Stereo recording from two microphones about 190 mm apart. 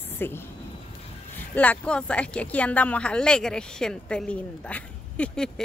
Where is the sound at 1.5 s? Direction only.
10° left (ahead or behind).